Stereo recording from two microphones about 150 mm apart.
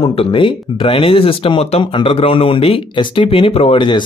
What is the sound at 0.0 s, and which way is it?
Speech, 40° left (ahead or behind).